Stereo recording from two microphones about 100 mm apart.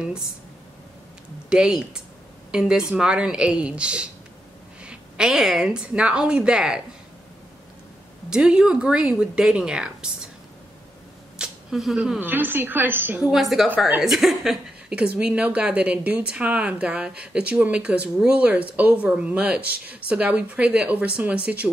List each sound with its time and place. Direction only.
1.5 s a woman's voice: 5° right (ahead or behind)
8.3 s a woman's voice: 5° right (ahead or behind)
11.3 s a sound: 5° right (ahead or behind)
12.2 s a woman's voice: 20° right (ahead or behind)
13.3 s a woman's voice: centre (ahead or behind)